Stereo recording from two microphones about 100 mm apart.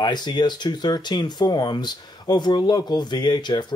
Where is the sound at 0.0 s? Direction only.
50° left (ahead or behind).